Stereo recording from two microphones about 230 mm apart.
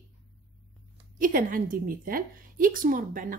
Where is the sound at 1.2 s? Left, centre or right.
Right.